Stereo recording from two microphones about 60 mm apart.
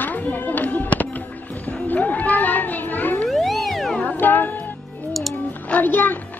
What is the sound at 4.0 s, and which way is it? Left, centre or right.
Music, left.